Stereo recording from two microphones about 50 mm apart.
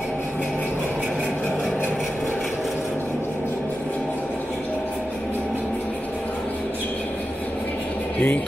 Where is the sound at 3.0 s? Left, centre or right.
Left.